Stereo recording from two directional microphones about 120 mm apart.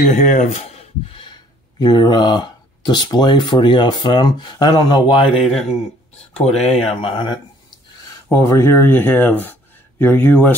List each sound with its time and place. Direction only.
0.1 s speech: 90° left; by 5.4 s 45° left (ahead or behind)
6.3 s speech: 60° left (ahead or behind)
8.3 s speech: 25° left (ahead or behind)